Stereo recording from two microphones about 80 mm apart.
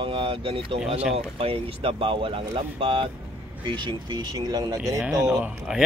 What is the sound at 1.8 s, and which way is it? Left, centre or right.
Speech, right.